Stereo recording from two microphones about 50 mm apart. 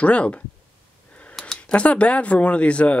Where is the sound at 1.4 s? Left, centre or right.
Centre.